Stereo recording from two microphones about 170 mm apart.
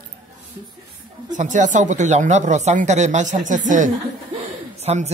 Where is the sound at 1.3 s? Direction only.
45° right (ahead or behind).